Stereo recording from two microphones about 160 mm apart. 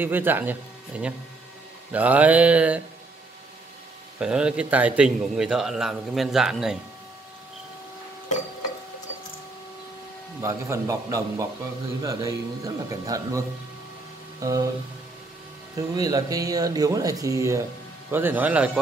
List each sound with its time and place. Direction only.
0.0 s speech: 10° right (ahead or behind)
1.9 s mantra: 10° right (ahead or behind)
4.2 s a man's voice: 5° right (ahead or behind)
10.4 s speech: 20° right (ahead or behind)
14.4 s speech: 20° right (ahead or behind)
15.7 s speech: 20° right (ahead or behind)
18.1 s mantra: 10° right (ahead or behind)